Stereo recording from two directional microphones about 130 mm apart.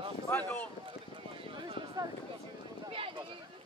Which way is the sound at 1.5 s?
40° right (ahead or behind).